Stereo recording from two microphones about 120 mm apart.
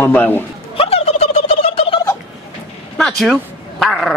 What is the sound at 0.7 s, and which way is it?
Turkey, 55° left (ahead or behind).